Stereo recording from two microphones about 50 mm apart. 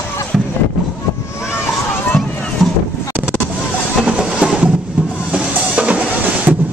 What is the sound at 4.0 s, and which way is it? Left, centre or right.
Music, centre.